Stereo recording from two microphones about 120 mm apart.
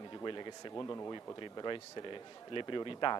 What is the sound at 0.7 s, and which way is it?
A man's voice, 25° left (ahead or behind).